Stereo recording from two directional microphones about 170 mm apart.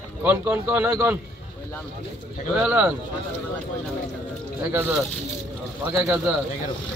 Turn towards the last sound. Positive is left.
turn(degrees=-5)  # may be behind; listen again after turning